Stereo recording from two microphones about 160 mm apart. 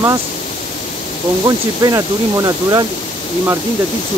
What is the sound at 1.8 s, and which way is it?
Speech, 20° right (ahead or behind).